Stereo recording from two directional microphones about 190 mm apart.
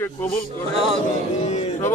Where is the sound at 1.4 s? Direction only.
40° left (ahead or behind).